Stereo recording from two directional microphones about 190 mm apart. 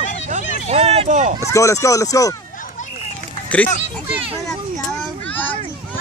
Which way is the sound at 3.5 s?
5° left (ahead or behind).